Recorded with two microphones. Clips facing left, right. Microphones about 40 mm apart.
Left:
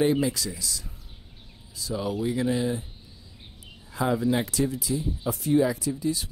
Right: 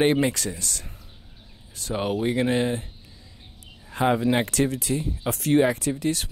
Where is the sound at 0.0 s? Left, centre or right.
Right.